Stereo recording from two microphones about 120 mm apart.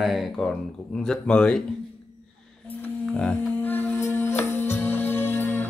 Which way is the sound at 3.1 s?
10° left (ahead or behind).